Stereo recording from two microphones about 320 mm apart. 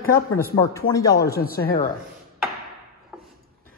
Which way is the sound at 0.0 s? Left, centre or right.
Left.